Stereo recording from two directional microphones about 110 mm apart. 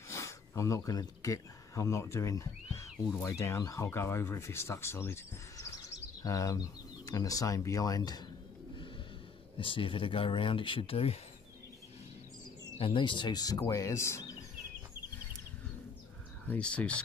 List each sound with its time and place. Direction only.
0.1 s speech: 30° left (ahead or behind)
6.2 s speech: 30° left (ahead or behind)
9.6 s speech: 50° left (ahead or behind)
12.7 s speech: 50° left (ahead or behind); by 14.3 s 25° left (ahead or behind)
16.4 s speech: 10° left (ahead or behind)